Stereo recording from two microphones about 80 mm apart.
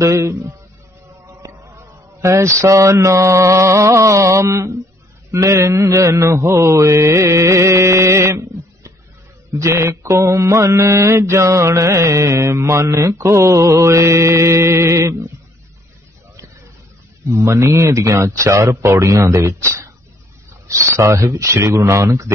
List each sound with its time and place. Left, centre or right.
0.0 s mantra: right
1.2 s speech: right
5.3 s mantra: right
17.2 s mantra: right